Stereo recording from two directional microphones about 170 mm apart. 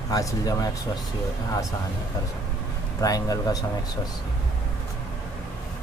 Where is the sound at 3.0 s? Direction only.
20° left (ahead or behind).